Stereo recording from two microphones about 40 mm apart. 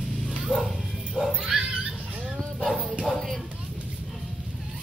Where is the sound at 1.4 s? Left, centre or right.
Centre.